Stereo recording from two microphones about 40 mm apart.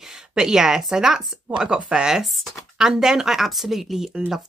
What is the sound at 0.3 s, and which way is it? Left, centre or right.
Speech, centre.